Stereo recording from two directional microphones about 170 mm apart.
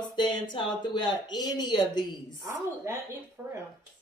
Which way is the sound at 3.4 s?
10° right (ahead or behind).